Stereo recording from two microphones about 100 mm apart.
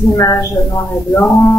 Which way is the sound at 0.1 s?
35° left (ahead or behind).